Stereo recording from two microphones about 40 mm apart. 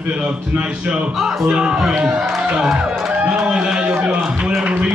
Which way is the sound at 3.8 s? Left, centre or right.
Right.